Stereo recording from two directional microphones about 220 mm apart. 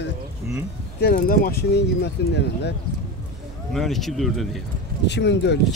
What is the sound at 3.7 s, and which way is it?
Speech, centre (ahead or behind).